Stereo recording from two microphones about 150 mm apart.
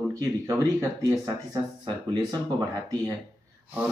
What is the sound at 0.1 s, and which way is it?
Speech, 20° right (ahead or behind).